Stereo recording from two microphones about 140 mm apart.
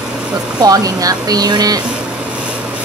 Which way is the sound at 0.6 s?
25° right (ahead or behind).